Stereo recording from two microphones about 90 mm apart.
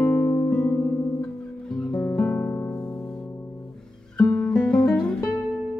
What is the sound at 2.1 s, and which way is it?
Music, 25° left (ahead or behind).